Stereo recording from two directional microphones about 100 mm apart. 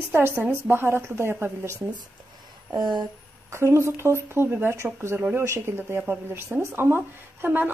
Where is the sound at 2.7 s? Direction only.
50° right (ahead or behind).